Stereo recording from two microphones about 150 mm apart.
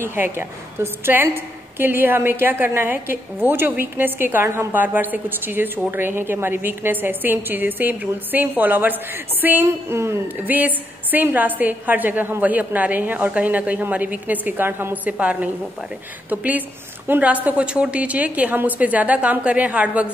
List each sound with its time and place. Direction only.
0.0 s a woman's voice: 15° right (ahead or behind)